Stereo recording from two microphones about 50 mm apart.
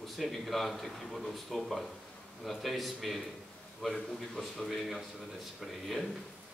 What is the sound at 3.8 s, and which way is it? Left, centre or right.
Speech, centre.